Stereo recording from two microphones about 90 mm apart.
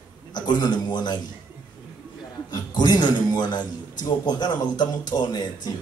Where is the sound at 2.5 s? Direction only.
55° left (ahead or behind).